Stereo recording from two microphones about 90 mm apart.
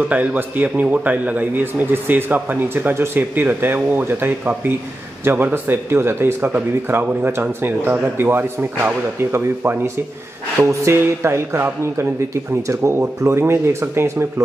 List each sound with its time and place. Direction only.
0.1 s a man's voice: 20° right (ahead or behind)